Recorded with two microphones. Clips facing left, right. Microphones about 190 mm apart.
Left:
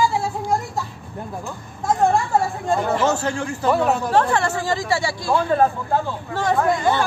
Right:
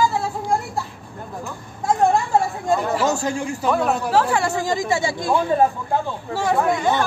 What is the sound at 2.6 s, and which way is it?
Speech, 10° right (ahead or behind).